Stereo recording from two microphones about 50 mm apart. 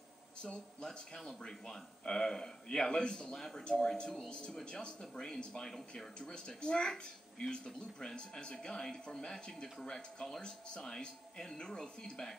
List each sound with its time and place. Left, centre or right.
0.4 s speech: centre